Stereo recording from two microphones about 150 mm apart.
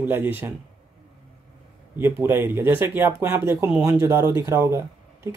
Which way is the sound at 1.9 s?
15° right (ahead or behind).